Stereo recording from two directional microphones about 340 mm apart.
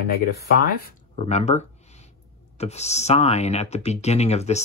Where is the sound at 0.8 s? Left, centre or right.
Centre.